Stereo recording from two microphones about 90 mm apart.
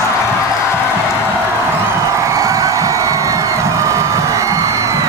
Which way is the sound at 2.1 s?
35° right (ahead or behind).